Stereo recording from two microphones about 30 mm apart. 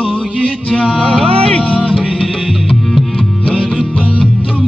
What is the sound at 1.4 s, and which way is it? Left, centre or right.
Music, left.